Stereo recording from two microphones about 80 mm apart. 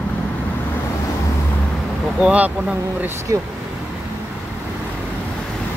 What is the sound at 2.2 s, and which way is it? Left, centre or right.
Speech, centre.